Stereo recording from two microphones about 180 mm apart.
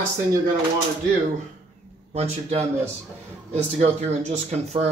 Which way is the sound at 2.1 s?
35° right (ahead or behind).